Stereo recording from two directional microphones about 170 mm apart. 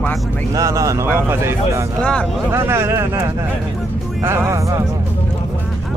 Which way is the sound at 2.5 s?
15° right (ahead or behind).